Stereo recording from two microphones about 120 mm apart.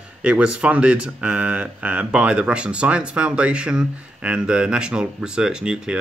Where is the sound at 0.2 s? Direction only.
10° right (ahead or behind).